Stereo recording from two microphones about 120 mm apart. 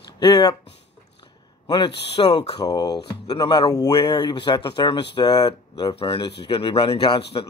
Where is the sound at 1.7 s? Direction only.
50° left (ahead or behind).